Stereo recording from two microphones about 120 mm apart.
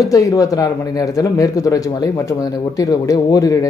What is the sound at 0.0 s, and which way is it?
Speech, 30° left (ahead or behind).